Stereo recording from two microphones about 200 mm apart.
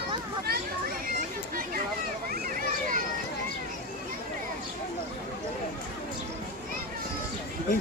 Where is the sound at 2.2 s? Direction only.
45° right (ahead or behind).